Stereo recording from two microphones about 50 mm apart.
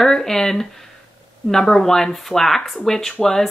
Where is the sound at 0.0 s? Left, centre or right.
Centre.